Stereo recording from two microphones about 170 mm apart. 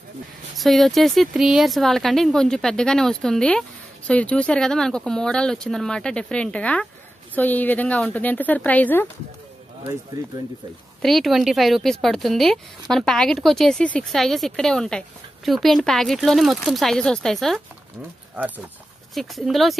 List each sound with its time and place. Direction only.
0.6 s speech: centre (ahead or behind)
10.2 s speech: 20° right (ahead or behind)
11.0 s speech: centre (ahead or behind)
19.1 s speech: centre (ahead or behind)